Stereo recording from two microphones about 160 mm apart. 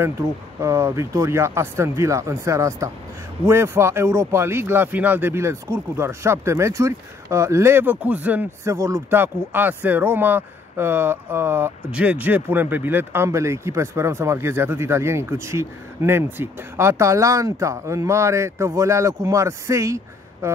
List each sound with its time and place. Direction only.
0.0 s speech: 15° right (ahead or behind)